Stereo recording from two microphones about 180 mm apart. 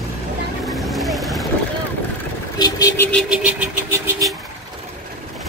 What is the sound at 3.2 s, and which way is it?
Vehicle, 5° right (ahead or behind).